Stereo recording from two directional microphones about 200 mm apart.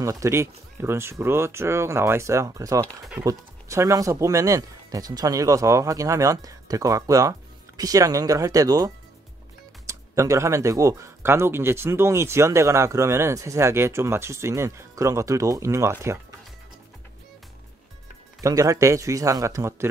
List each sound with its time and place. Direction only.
0.0 s speech: 15° right (ahead or behind)
18.4 s speech: 15° right (ahead or behind)